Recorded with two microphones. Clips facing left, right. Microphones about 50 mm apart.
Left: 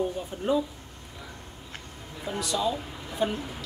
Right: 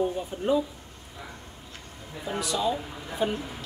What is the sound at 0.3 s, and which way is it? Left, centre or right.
Speech, centre.